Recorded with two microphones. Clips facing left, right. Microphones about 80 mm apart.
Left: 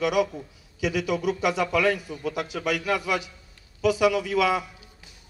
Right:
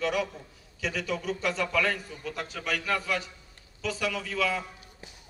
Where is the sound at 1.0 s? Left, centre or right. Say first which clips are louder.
Left 5 dB; left.